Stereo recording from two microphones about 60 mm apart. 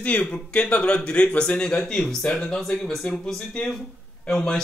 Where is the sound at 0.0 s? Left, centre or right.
Left.